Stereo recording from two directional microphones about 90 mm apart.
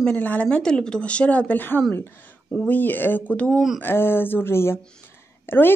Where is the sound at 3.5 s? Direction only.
Centre (ahead or behind).